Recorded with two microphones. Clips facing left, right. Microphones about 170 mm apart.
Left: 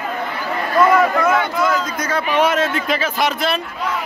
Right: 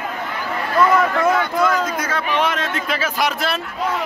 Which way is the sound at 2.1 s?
5° left (ahead or behind).